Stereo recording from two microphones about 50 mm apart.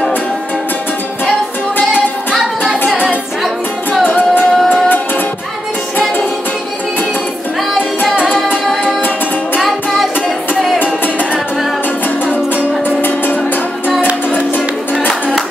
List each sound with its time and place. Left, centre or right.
4.1 s music: left
9.6 s music: centre
12.3 s music: left
13.0 s music: left